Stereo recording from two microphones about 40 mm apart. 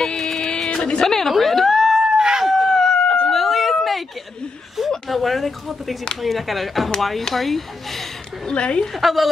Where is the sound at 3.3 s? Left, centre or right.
Centre.